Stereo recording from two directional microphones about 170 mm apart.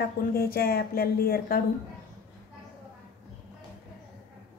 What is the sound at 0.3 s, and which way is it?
Speech, 60° left (ahead or behind).